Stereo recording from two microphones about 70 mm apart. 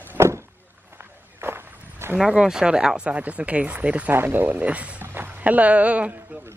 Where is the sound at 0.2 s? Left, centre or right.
Right.